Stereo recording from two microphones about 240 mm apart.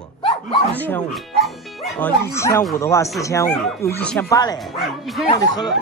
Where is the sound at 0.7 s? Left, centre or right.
Centre.